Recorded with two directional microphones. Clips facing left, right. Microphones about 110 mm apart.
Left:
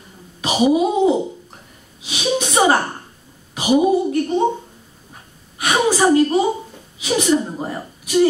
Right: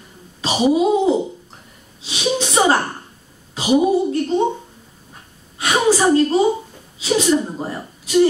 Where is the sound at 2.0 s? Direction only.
15° left (ahead or behind).